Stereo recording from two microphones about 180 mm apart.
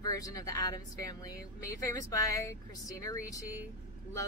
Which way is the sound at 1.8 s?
20° left (ahead or behind).